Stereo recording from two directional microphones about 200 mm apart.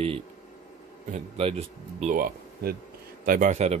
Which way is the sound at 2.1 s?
45° right (ahead or behind).